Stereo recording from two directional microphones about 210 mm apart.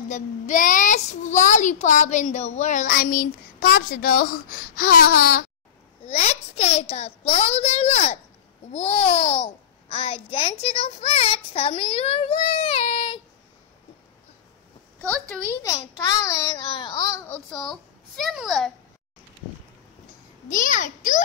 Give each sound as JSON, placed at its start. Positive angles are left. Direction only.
{"t": 0.1, "sound": "a child's voice", "side_deg": 35}
{"t": 6.0, "sound": "a child's voice", "side_deg": 30}
{"t": 15.0, "sound": "a woman's voice", "side_deg": 5}
{"t": 17.5, "sound": "a child's voice", "side_deg": 0}
{"t": 20.4, "sound": "a child's voice", "side_deg": 40}